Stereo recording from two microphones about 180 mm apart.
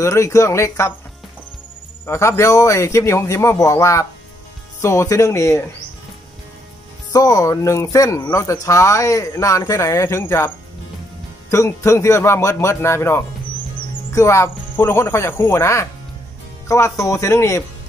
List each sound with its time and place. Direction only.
0.0 s speech: 15° left (ahead or behind)
2.0 s speech: 15° left (ahead or behind)
7.1 s speech: 20° left (ahead or behind)
11.5 s speech: 15° left (ahead or behind)